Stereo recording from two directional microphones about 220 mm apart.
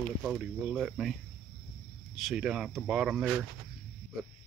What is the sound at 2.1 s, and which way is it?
Speech, centre (ahead or behind).